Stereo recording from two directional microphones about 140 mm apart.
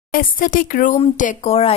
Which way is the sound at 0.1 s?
85° left.